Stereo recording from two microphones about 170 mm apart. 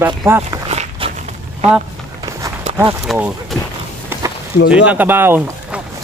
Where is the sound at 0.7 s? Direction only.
35° right (ahead or behind).